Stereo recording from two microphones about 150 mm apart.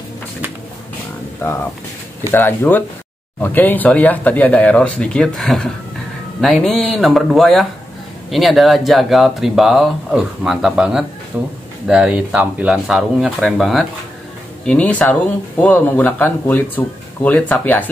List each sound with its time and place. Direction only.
1.4 s speech: 20° left (ahead or behind)